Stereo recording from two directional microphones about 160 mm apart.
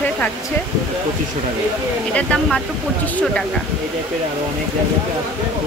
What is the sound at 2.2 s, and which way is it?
Speech, 5° left (ahead or behind).